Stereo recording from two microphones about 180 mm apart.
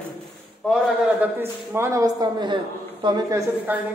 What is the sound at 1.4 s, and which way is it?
A man's voice, 15° right (ahead or behind).